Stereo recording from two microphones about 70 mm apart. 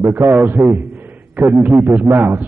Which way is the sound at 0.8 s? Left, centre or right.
Right.